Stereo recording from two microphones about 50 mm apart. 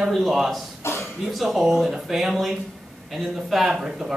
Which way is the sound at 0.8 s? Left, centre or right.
Left.